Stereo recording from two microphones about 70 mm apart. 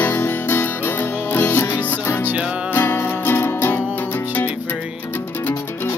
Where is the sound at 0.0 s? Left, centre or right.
Left.